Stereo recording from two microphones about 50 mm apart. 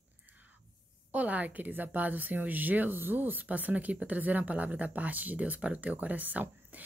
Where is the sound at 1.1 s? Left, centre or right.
Right.